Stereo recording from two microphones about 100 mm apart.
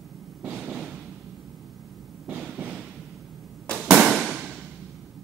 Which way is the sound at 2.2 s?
5° right (ahead or behind).